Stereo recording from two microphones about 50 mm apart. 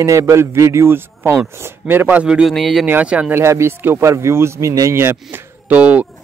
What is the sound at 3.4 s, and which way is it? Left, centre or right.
Speech, right.